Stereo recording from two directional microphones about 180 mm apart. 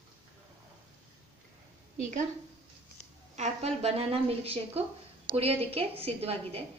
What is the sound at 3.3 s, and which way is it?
A woman's voice, 40° right (ahead or behind).